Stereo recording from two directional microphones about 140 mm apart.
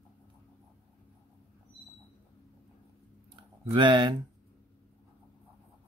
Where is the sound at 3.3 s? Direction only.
35° right (ahead or behind).